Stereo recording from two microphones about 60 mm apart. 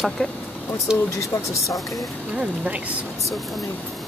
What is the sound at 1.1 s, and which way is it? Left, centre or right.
Speech, left.